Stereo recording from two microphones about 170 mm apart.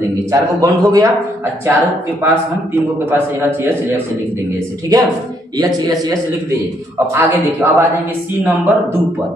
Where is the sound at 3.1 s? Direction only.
10° right (ahead or behind).